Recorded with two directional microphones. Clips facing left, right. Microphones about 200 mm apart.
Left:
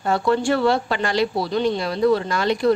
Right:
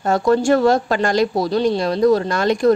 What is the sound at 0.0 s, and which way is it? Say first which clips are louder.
A woman's voice: right 4 dB; 45° right (ahead or behind).